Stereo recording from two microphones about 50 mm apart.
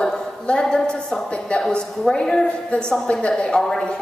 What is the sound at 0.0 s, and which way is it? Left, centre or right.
A woman's voice, centre.